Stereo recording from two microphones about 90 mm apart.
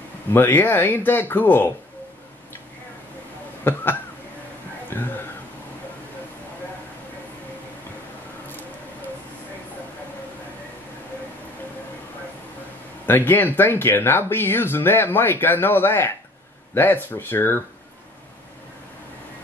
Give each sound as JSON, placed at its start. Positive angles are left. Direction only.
{"t": 0.3, "sound": "speech", "side_deg": 20}
{"t": 3.6, "sound": "speech", "side_deg": 25}
{"t": 4.8, "sound": "a sound", "side_deg": 20}
{"t": 13.0, "sound": "speech", "side_deg": 20}